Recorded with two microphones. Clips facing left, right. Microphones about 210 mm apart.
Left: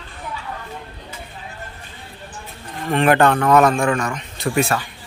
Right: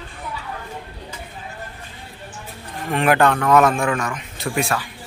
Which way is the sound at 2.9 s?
Centre (ahead or behind).